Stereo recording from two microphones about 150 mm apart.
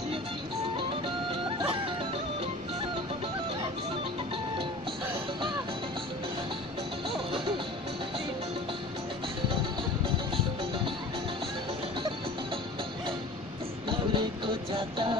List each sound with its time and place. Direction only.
9.5 s music: 35° right (ahead or behind)
13.8 s music: 35° right (ahead or behind)